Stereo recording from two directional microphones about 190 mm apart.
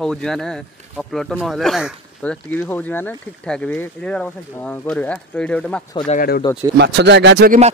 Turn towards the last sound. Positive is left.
turn(degrees=-55)  # may be behind; listen again after turning